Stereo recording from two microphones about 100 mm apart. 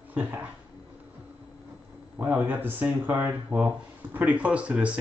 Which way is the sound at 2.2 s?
20° right (ahead or behind).